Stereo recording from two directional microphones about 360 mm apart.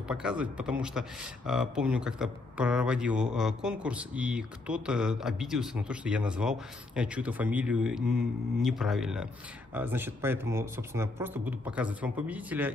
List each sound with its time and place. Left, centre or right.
0.1 s a man's voice: centre